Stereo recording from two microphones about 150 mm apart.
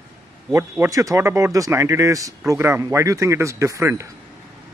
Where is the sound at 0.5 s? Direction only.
15° right (ahead or behind).